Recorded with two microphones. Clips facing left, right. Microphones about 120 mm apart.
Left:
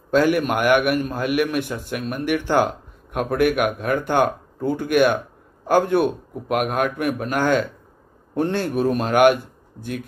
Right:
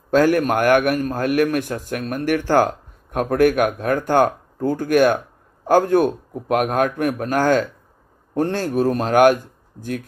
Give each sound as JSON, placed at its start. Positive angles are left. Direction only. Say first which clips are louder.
{"t": 0.4, "sound": "a man's voice", "louder": "right 2 dB", "side_deg": -45}